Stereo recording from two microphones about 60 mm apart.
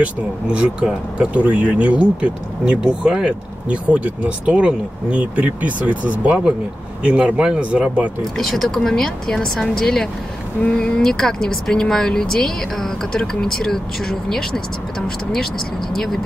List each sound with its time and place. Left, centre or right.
0.0 s speech: centre
8.4 s speech: centre